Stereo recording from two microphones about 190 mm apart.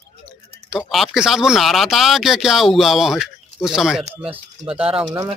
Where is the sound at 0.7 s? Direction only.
Centre (ahead or behind).